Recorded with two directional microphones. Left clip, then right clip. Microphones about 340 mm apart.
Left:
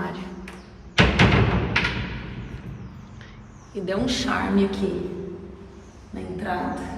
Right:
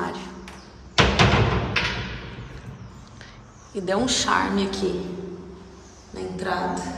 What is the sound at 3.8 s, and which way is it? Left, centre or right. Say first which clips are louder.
A woman's voice: right 3 dB; centre.